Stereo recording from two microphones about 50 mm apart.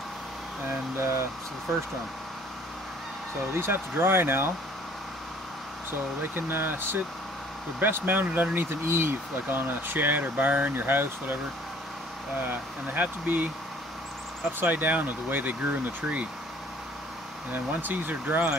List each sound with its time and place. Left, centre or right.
0.9 s speech: right
3.5 s speech: right
6.3 s speech: right
8.5 s speech: right
12.4 s speech: right
14.6 s speech: right
17.5 s speech: right